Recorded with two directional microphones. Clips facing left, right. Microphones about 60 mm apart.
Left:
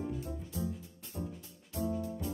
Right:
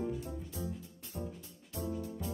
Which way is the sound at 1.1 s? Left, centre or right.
Centre.